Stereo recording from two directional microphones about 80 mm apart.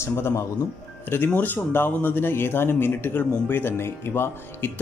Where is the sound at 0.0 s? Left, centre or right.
Left.